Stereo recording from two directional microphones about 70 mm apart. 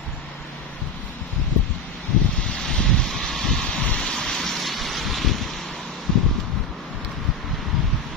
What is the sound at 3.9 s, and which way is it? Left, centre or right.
Vehicle, centre.